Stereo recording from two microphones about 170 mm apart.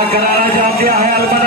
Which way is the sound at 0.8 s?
60° right (ahead or behind).